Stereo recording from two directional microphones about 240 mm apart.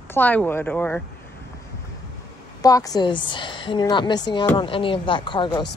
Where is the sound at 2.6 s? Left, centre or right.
Centre.